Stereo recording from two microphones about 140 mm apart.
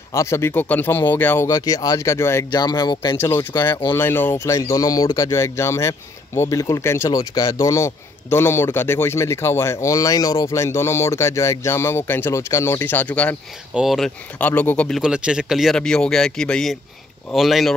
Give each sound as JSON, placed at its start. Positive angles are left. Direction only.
{"t": 0.1, "sound": "speech", "side_deg": 20}
{"t": 2.5, "sound": "speech", "side_deg": 30}
{"t": 3.9, "sound": "speech", "side_deg": 15}
{"t": 13.7, "sound": "speech", "side_deg": 0}
{"t": 15.0, "sound": "speech", "side_deg": -5}